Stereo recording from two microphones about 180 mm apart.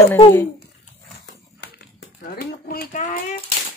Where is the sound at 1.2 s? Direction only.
65° left (ahead or behind); by 3.2 s 45° left (ahead or behind).